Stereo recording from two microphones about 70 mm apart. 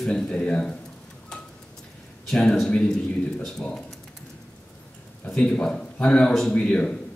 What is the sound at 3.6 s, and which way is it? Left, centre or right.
Speech, centre.